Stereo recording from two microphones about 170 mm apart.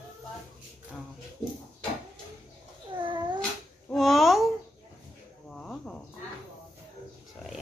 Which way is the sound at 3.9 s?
Centre (ahead or behind).